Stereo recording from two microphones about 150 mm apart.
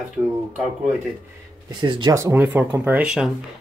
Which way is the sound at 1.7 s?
30° right (ahead or behind).